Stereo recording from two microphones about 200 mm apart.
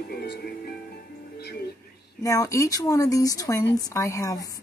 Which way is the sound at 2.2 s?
15° left (ahead or behind).